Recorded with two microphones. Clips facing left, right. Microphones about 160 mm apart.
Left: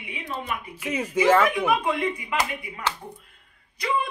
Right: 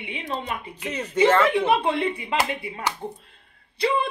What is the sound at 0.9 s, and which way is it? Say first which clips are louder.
Speech: left 4 dB; 10° left (ahead or behind).